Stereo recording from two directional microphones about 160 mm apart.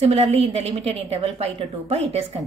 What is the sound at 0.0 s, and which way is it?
A woman's voice, 40° right (ahead or behind).